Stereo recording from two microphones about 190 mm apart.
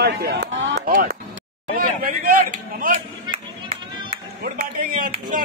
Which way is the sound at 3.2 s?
25° right (ahead or behind).